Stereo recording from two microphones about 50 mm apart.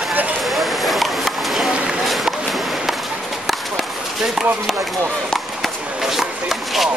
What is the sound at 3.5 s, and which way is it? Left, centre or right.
Chop, centre.